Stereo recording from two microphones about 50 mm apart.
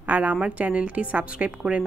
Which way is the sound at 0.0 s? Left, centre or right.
Right.